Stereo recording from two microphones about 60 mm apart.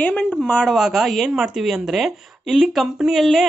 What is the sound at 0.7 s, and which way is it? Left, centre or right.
Speech, centre.